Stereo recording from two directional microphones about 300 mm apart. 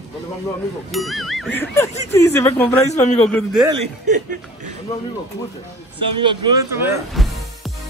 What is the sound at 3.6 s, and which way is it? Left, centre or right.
Speech, centre.